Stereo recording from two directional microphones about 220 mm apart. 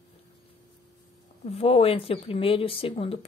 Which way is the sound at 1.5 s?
25° left (ahead or behind).